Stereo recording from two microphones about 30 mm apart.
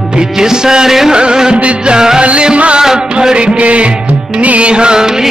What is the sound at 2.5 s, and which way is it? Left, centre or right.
Music, right.